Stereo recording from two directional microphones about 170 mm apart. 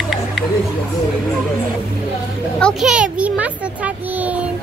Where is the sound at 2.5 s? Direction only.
Centre (ahead or behind).